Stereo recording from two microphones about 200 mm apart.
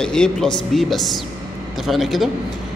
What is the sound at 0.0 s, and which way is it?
A man's voice, 5° left (ahead or behind).